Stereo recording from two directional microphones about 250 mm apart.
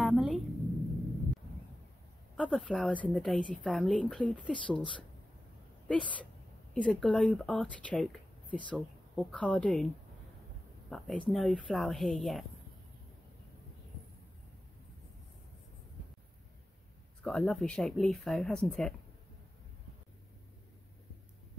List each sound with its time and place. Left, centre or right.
0.0 s a sound: centre
2.3 s a woman's voice: centre
10.9 s a woman's voice: centre
17.2 s a woman's voice: centre